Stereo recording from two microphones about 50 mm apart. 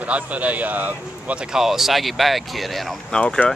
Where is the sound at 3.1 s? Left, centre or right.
Centre.